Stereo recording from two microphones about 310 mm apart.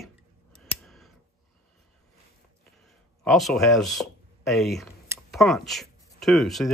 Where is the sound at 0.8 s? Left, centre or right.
Centre.